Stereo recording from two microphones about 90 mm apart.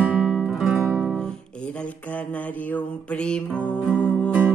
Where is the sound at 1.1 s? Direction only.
10° left (ahead or behind).